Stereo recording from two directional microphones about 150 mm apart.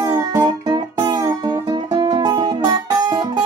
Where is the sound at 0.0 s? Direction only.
25° right (ahead or behind).